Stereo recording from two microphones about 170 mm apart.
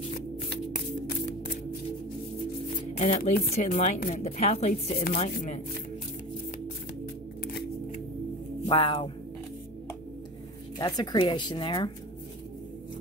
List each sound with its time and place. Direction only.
0.1 s shuffling cards: 45° left (ahead or behind)
2.9 s speech: 40° left (ahead or behind)
5.3 s speech: 55° left (ahead or behind)
8.6 s speech: 30° left (ahead or behind)
10.8 s speech: 25° left (ahead or behind)